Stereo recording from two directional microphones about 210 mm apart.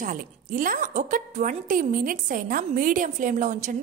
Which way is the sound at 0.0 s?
40° right (ahead or behind).